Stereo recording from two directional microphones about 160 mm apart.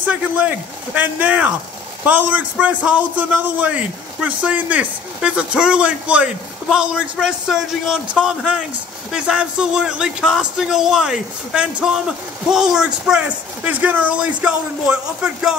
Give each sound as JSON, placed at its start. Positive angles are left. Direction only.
{"t": 0.0, "sound": "a man's voice", "side_deg": -10}